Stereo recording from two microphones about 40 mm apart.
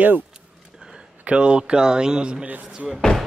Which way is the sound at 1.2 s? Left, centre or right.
Right.